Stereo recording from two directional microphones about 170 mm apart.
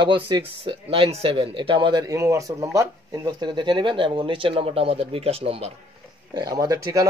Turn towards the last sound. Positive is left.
turn(degrees=-20)  # may be behind; listen again after turning